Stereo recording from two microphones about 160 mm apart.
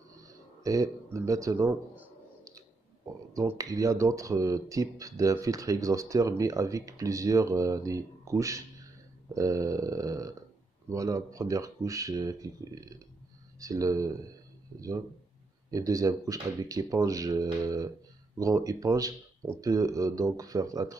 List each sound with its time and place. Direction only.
0.1 s a sound: 20° right (ahead or behind)
3.3 s speech: 20° right (ahead or behind)
15.7 s speech: 20° right (ahead or behind)